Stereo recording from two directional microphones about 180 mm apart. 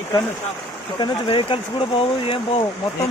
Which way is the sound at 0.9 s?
25° left (ahead or behind).